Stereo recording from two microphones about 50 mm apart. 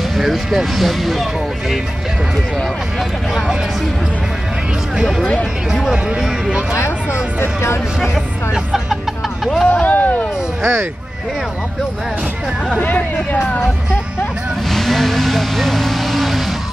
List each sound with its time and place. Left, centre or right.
0.2 s speech: centre
4.9 s speech: centre
9.4 s speech: centre
9.7 s a sound: left
10.6 s speech: right
12.8 s speech: left
14.7 s vehicle: centre